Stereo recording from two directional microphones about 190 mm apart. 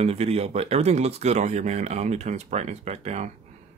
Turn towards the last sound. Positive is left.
turn(degrees=-35)  # may be behind; listen again after turning